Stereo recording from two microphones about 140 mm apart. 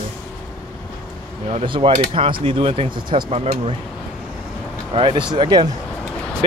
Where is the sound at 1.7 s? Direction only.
40° right (ahead or behind).